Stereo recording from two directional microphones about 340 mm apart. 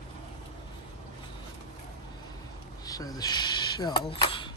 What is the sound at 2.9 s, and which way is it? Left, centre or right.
Speech, centre.